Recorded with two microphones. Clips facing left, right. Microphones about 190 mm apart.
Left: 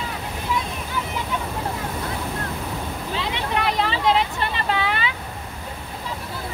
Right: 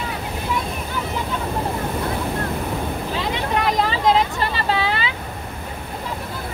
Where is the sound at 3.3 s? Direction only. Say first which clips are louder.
Right 3 dB; 45° right (ahead or behind).